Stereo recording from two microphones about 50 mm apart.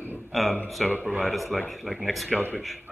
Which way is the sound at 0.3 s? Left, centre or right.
Centre.